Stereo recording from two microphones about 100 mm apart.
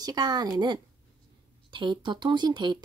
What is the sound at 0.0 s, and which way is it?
A woman's voice, 40° right (ahead or behind).